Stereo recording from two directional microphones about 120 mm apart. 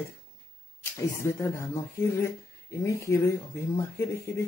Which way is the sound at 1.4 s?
25° left (ahead or behind).